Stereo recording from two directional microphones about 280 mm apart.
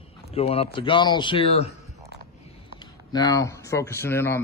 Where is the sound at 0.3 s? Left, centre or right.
Left.